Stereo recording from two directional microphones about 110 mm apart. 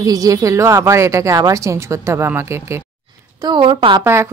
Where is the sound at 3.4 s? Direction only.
50° right (ahead or behind).